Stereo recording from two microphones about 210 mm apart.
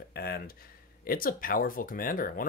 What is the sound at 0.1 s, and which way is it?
Speech, 45° left (ahead or behind).